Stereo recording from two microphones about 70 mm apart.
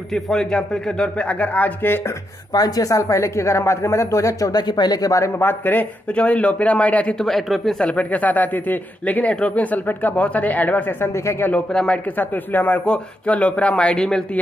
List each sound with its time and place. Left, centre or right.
0.1 s a man's voice: centre
2.5 s speech: left
4.6 s speech: left
5.4 s speech: left
7.2 s speech: centre
7.8 s speech: centre
11.2 s speech: left
11.7 s a man's voice: centre
12.2 s a man's voice: left